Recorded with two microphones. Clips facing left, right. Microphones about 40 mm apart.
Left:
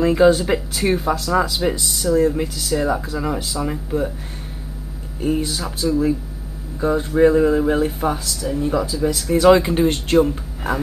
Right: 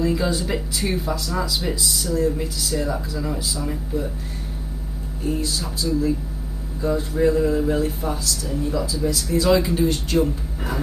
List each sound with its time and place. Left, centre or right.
0.0 s speech: left
5.2 s speech: left